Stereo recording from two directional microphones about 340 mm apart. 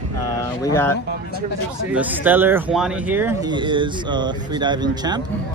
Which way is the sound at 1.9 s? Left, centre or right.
Centre.